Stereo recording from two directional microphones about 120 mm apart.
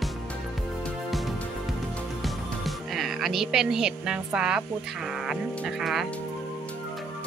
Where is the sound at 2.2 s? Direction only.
Centre (ahead or behind).